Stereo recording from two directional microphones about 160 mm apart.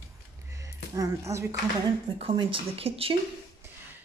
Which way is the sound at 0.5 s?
20° right (ahead or behind).